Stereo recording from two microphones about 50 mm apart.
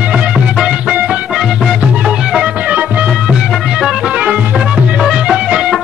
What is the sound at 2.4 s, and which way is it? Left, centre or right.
Music, right.